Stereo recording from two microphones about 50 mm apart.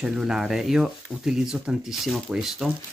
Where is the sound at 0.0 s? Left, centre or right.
Centre.